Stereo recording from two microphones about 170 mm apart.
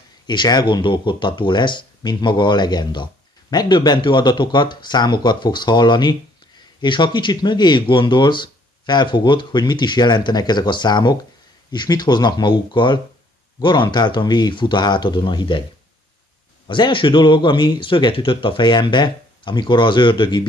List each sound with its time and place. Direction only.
0.3 s speech: 25° left (ahead or behind)
16.6 s speech: 30° left (ahead or behind)